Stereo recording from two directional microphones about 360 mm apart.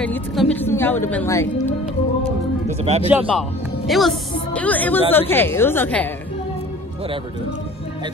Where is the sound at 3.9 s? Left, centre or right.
Centre.